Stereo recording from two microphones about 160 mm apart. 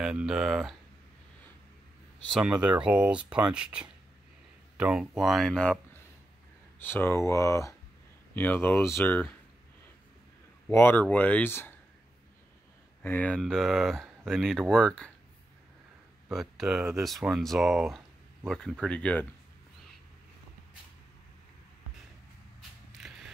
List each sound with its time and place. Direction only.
0.0 s speech: 5° right (ahead or behind)
2.2 s speech: 5° right (ahead or behind)
6.8 s speech: 10° left (ahead or behind)
10.7 s speech: 15° left (ahead or behind)
13.0 s speech: 10° left (ahead or behind)
16.3 s speech: centre (ahead or behind)
22.6 s mechanisms: centre (ahead or behind)